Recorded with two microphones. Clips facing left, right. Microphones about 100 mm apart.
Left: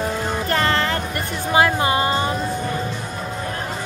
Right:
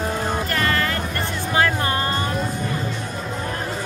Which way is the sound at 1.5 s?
15° left (ahead or behind).